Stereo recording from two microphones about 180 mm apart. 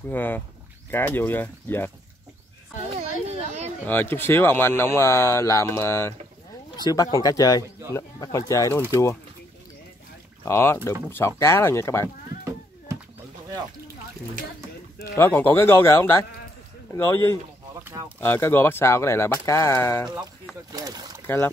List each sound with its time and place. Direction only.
0.1 s speech: 10° left (ahead or behind)
3.8 s speech: 10° left (ahead or behind)
10.4 s speech: 15° left (ahead or behind)
15.1 s speech: 10° left (ahead or behind)
17.8 s speech: 10° right (ahead or behind)
18.2 s speech: 15° left (ahead or behind)
21.3 s speech: 10° left (ahead or behind)